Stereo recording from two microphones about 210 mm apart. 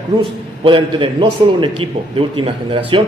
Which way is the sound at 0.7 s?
25° right (ahead or behind).